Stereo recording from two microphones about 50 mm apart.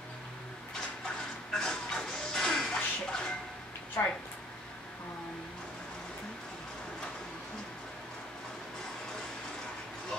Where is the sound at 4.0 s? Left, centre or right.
Left.